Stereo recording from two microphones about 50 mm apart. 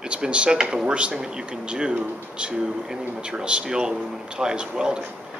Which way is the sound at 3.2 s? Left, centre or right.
Centre.